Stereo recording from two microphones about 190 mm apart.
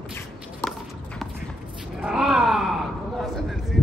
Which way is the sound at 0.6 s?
10° left (ahead or behind).